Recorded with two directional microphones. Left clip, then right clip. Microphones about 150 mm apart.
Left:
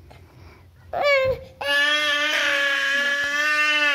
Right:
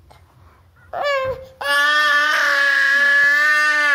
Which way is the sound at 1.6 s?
Centre (ahead or behind).